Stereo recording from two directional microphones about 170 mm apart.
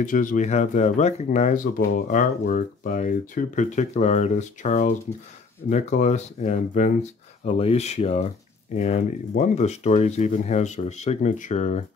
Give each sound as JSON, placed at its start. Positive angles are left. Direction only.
{"t": 0.0, "sound": "speech", "side_deg": 50}